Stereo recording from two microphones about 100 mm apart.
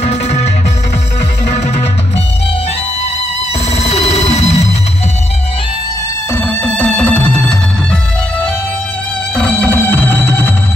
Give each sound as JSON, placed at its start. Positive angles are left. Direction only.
{"t": 0.0, "sound": "music", "side_deg": 90}
{"t": 3.7, "sound": "music", "side_deg": 90}
{"t": 6.3, "sound": "music", "side_deg": 15}